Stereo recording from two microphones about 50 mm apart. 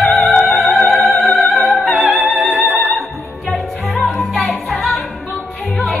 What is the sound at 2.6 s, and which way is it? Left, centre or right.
Music, right.